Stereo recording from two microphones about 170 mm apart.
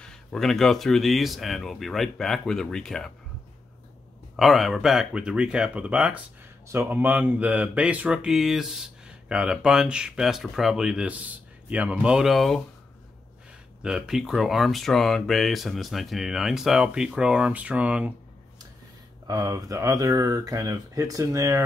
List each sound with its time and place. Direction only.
0.0 s speech: 5° left (ahead or behind)
4.4 s speech: centre (ahead or behind)
13.8 s speech: 5° right (ahead or behind)
19.2 s speech: 20° right (ahead or behind)